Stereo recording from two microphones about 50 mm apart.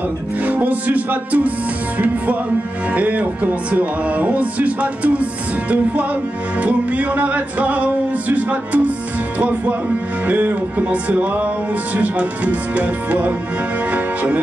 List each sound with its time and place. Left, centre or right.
0.5 s music: right
2.9 s music: right